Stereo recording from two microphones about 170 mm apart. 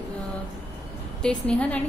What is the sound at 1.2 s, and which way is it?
Speech, 5° left (ahead or behind).